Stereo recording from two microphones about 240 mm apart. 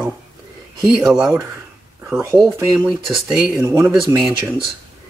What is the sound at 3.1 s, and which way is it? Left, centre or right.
Speech, centre.